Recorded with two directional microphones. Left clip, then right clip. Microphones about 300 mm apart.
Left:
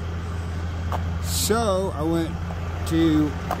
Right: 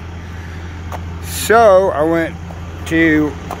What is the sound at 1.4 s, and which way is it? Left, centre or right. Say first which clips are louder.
Speech: right 15 dB; centre.